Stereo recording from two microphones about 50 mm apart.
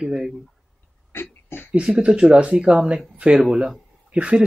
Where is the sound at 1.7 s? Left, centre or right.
Right.